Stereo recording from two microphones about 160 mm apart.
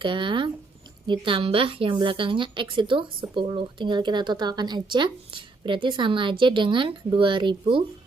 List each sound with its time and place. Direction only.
0.0 s a woman's voice: 30° right (ahead or behind)